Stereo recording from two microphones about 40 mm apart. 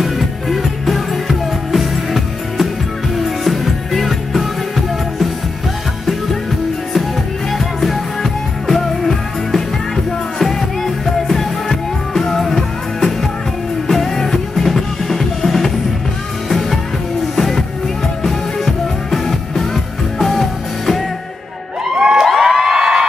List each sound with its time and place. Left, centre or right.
0.0 s music: centre
7.5 s music: centre
21.9 s cheering: right
22.2 s a sound: centre